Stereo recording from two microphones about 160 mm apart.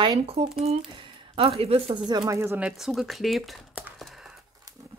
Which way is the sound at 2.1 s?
20° right (ahead or behind).